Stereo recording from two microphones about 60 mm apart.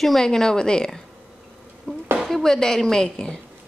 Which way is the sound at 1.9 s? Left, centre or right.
Centre.